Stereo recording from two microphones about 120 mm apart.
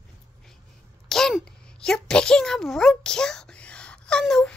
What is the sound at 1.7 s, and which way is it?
A child's voice, 5° left (ahead or behind).